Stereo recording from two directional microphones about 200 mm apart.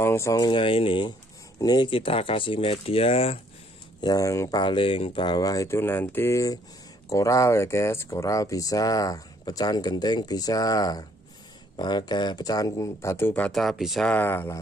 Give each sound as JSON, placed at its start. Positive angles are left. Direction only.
{"t": 0.0, "sound": "speech", "side_deg": 15}
{"t": 4.0, "sound": "speech", "side_deg": 15}